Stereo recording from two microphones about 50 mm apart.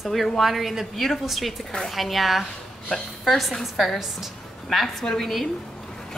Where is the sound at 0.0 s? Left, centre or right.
Centre.